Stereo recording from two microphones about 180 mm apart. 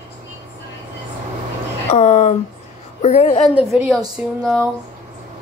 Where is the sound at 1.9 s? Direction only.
40° left (ahead or behind).